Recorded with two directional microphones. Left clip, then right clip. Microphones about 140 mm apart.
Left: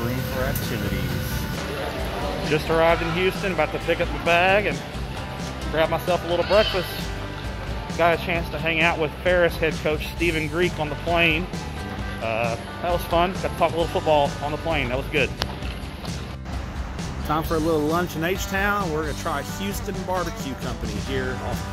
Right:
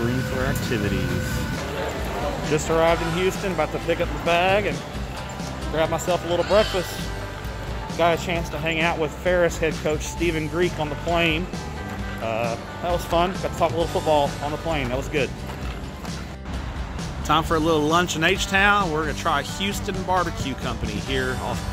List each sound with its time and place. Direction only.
2.5 s speech: 15° right (ahead or behind)
5.8 s speech: 10° right (ahead or behind)
8.0 s speech: 15° right (ahead or behind)
12.8 s speech: 10° right (ahead or behind)
17.3 s speech: 10° right (ahead or behind)